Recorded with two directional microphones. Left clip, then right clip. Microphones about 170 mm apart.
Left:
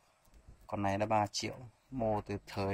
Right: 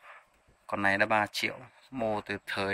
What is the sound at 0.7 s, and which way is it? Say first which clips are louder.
Speech: right 6 dB; 5° left (ahead or behind).